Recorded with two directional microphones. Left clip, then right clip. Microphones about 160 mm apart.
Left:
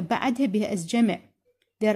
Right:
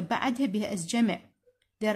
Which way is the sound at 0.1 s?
25° left (ahead or behind).